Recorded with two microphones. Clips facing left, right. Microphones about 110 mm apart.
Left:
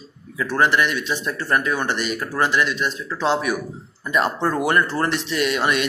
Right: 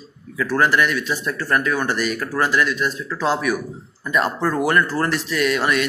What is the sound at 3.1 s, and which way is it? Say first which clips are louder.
Speech: left 1 dB; 5° right (ahead or behind).